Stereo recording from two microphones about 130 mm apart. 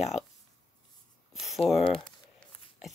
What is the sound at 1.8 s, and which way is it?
Speech, 40° left (ahead or behind).